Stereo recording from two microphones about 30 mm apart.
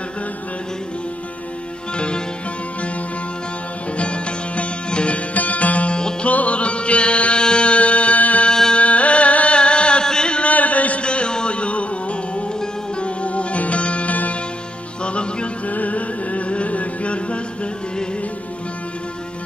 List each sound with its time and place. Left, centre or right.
2.0 s music: left
3.9 s music: left
5.3 s music: left
9.6 s chant: left
10.0 s a sound: left
10.4 s a sound: left
11.0 s music: left
15.7 s music: left